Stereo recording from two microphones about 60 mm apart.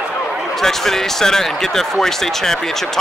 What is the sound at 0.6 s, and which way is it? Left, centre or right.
Speech, centre.